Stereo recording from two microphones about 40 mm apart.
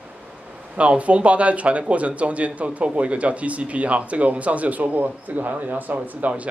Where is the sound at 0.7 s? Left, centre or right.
Right.